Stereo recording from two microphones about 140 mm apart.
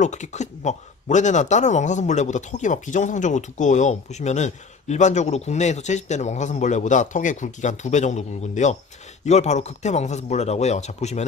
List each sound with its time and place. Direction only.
0.0 s speech: 55° left (ahead or behind)